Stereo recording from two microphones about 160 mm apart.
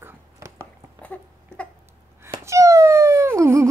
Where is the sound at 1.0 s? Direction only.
10° left (ahead or behind).